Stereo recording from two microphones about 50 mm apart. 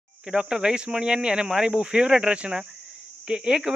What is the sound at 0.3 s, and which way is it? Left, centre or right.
Speech, centre.